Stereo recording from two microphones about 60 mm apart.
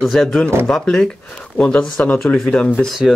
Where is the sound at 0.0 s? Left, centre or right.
Centre.